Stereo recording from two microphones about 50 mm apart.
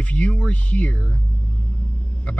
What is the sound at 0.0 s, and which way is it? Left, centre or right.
Speech, left.